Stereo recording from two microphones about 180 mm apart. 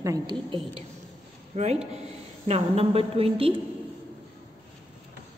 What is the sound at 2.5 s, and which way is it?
A woman's voice, 35° right (ahead or behind).